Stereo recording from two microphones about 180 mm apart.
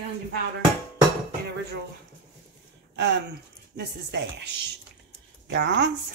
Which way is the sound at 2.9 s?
70° right (ahead or behind).